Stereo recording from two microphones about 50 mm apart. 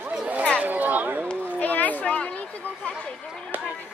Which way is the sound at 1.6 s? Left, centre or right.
Left.